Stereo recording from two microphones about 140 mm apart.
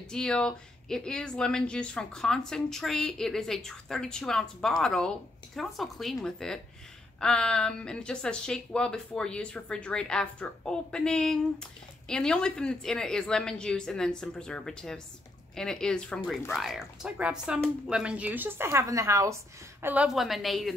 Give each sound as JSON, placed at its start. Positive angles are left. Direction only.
{"t": 0.1, "sound": "a woman's voice", "side_deg": 5}
{"t": 20.2, "sound": "speech", "side_deg": 0}